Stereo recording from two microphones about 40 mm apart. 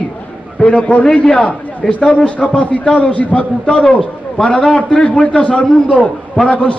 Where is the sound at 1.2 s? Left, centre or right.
Left.